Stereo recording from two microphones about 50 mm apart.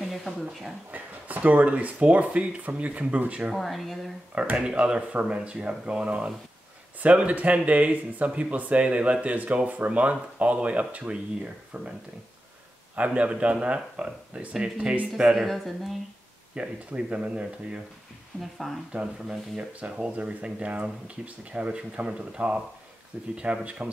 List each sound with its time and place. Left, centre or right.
0.2 s speech: centre
0.9 s speech: right
3.5 s speech: centre
4.6 s speech: centre; by 11.9 s right
12.9 s speech: right
15.3 s speech: centre
16.5 s speech: right
18.4 s speech: centre
18.9 s speech: centre